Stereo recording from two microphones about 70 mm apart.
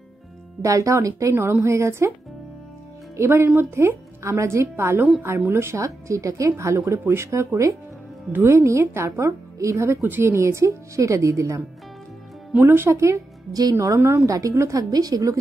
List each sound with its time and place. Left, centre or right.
0.6 s speech: right
1.3 s a woman's voice: right
3.2 s a woman's voice: right
10.0 s speech: right
12.5 s a woman's voice: right